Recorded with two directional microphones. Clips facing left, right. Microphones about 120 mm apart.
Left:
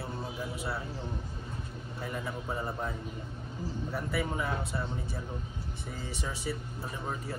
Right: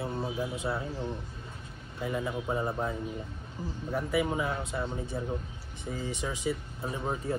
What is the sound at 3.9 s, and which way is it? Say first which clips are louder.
Speech: right 6 dB; 15° right (ahead or behind).